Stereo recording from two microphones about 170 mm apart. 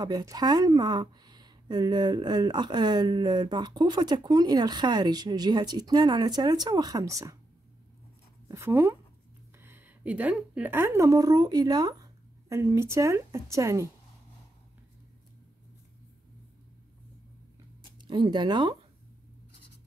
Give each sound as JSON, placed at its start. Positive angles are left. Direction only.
{"t": 0.0, "sound": "speech", "side_deg": -20}
{"t": 8.5, "sound": "a woman's voice", "side_deg": -15}
{"t": 17.9, "sound": "speech", "side_deg": -30}